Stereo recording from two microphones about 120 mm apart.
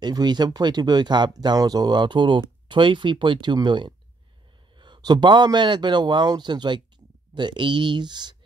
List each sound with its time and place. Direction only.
0.0 s speech: 35° right (ahead or behind)